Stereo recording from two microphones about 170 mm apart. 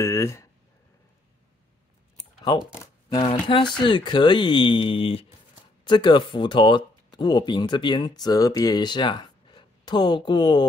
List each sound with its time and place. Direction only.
0.0 s speech: 15° left (ahead or behind)
2.1 s typing: 25° left (ahead or behind)
3.2 s speech: 30° left (ahead or behind)